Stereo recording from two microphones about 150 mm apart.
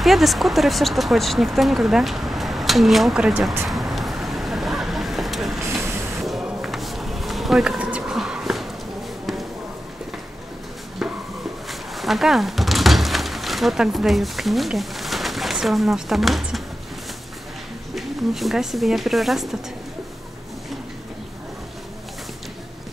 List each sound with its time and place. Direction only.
0.0 s speech: centre (ahead or behind)
3.6 s vehicle: centre (ahead or behind)
5.6 s vehicle: 20° right (ahead or behind)
6.2 s a sound: centre (ahead or behind)
11.0 s a sound: centre (ahead or behind)
17.9 s speech: centre (ahead or behind)